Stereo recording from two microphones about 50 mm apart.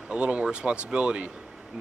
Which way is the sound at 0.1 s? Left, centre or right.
Right.